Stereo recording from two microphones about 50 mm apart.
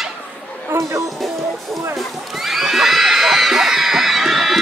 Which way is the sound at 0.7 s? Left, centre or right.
Right.